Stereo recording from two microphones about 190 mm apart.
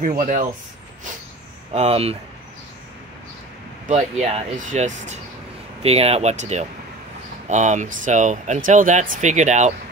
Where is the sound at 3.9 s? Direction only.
35° right (ahead or behind).